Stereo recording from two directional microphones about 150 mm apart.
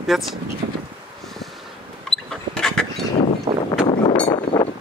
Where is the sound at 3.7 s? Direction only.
35° left (ahead or behind).